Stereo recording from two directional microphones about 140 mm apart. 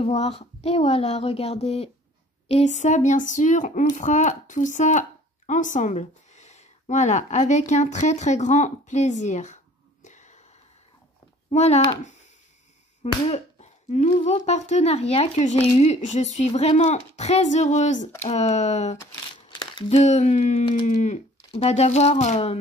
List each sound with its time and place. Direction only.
0.0 s speech: 50° left (ahead or behind)
10.0 s a sound: 60° left (ahead or behind)
11.5 s speech: 50° left (ahead or behind)
13.0 s finger snapping: 50° left (ahead or behind)
14.2 s speech: 55° left (ahead or behind)
19.5 s a sound: 35° left (ahead or behind)
19.9 s speech: 55° left (ahead or behind)
21.5 s speech: 50° left (ahead or behind)